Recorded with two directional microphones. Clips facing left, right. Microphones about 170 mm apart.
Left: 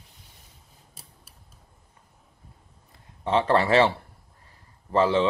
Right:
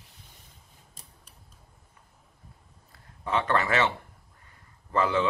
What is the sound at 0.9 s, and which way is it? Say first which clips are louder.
Scissors: left 3 dB; 5° left (ahead or behind).